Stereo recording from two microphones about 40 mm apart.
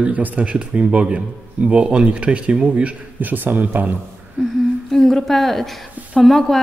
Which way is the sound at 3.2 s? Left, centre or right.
Right.